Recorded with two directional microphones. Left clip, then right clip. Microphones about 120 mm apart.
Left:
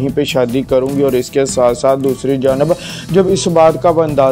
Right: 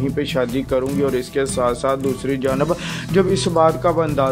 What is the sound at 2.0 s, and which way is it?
Speech, 25° left (ahead or behind).